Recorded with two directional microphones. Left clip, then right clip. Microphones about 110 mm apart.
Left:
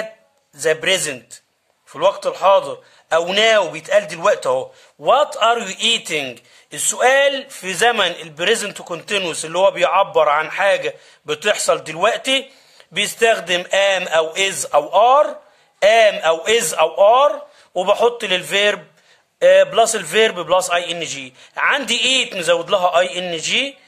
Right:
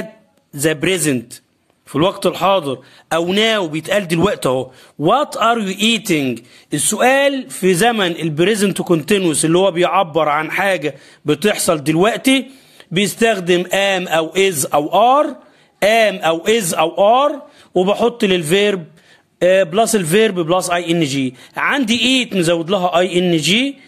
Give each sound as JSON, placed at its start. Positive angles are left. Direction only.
{"t": 0.6, "sound": "speech", "side_deg": -60}
{"t": 3.3, "sound": "a man's voice", "side_deg": -70}
{"t": 12.9, "sound": "a man's voice", "side_deg": -40}